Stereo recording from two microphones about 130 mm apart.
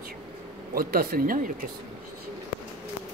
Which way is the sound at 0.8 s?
90° right.